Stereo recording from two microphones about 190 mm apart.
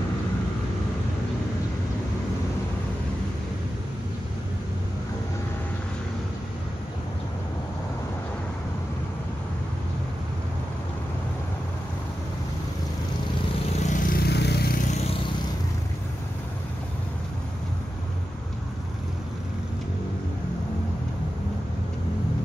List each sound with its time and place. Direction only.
13.8 s vehicle: 50° left (ahead or behind)